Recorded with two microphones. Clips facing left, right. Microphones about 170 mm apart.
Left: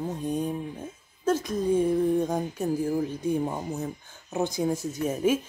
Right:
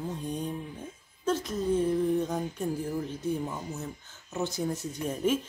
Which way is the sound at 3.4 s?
35° left (ahead or behind).